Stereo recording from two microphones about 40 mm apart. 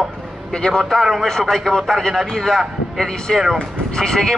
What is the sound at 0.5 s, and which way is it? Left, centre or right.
Speech, centre.